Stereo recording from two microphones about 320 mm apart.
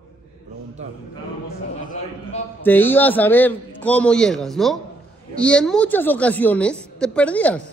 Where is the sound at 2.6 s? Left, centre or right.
Centre.